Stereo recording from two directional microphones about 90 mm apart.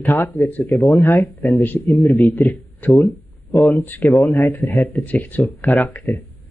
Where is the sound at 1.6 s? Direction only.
20° left (ahead or behind).